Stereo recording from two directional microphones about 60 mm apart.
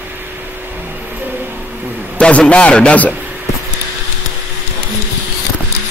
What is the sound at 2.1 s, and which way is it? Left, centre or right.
A man's voice, centre.